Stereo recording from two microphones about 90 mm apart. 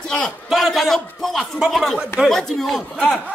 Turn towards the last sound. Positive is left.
turn(degrees=0)  # may be behind; listen again after turning